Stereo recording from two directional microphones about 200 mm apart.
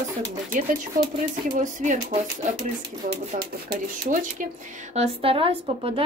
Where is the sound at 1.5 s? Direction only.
40° right (ahead or behind).